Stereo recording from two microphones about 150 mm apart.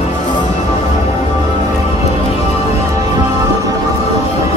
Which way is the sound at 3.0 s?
25° right (ahead or behind).